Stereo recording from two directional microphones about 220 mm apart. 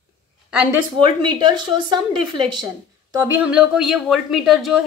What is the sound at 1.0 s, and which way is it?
A woman's voice, 20° right (ahead or behind).